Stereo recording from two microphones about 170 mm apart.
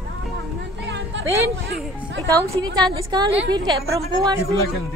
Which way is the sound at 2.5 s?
25° right (ahead or behind).